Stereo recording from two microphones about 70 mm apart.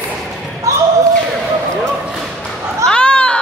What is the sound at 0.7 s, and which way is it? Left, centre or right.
Basketball bounce, right.